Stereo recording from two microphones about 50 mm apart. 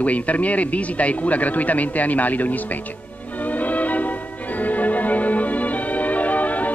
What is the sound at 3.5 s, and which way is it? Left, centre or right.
Music, left.